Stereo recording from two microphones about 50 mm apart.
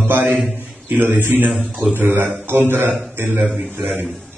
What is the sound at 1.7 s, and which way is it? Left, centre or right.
Speech, centre.